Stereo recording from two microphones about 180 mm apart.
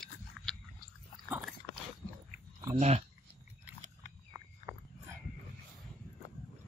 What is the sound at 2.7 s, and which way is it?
Speech, 35° right (ahead or behind).